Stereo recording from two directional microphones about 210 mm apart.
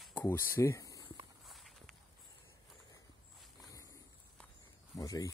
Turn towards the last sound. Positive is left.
turn(degrees=15)  # may be behind; listen again after turning